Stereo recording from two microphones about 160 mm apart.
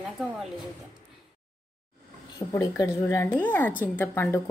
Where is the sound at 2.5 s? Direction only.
20° left (ahead or behind).